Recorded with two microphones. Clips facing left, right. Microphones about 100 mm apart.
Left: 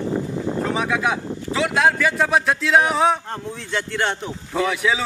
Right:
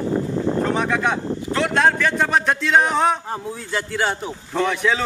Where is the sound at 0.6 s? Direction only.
Centre (ahead or behind).